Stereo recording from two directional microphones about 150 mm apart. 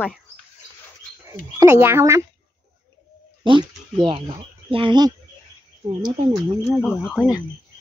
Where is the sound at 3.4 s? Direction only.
30° right (ahead or behind).